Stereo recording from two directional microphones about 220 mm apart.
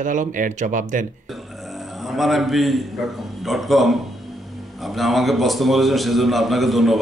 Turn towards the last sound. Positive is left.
turn(degrees=0)  # may be behind; listen again after turning